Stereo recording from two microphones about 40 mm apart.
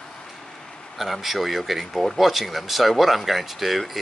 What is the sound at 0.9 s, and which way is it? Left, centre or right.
Speech, centre.